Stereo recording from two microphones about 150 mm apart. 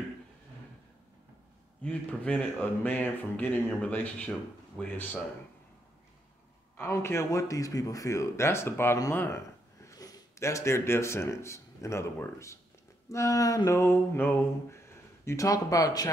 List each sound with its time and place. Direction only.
1.8 s speech: 10° left (ahead or behind)
6.8 s speech: 15° left (ahead or behind)